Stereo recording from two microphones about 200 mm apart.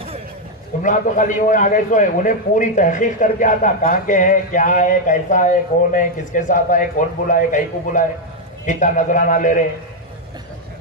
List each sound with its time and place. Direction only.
0.8 s a man's voice: 40° left (ahead or behind)